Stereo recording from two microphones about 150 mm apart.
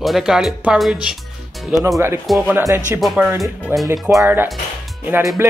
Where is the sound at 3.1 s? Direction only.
10° right (ahead or behind).